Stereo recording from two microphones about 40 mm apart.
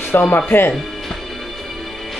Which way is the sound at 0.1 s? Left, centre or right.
Left.